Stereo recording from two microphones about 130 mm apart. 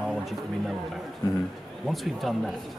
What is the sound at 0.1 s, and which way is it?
Speech, centre (ahead or behind).